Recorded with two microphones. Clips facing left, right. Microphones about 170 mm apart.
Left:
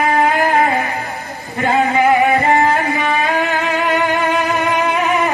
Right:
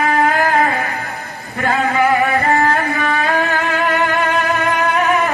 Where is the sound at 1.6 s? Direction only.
20° left (ahead or behind).